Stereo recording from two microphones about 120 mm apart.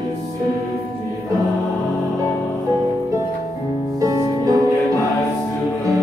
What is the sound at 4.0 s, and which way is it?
Music, 25° right (ahead or behind).